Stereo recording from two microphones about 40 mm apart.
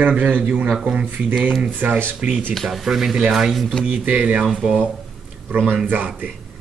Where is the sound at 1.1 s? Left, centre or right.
Right.